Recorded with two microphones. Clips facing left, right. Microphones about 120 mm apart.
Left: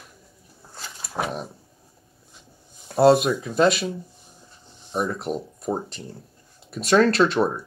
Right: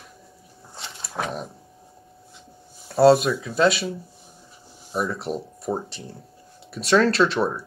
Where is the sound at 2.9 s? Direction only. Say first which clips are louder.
Right 1 dB; centre (ahead or behind).